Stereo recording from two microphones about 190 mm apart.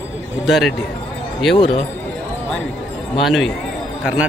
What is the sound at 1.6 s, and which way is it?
Speech, 25° left (ahead or behind).